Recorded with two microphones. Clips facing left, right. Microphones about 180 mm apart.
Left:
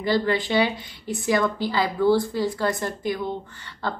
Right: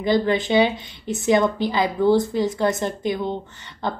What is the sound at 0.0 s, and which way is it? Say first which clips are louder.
A woman's voice: right 3 dB; 20° right (ahead or behind).